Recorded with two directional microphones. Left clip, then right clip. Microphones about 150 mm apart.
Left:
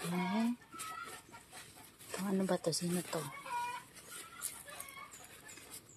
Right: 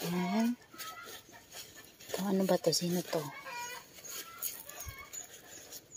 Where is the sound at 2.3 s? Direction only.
30° right (ahead or behind).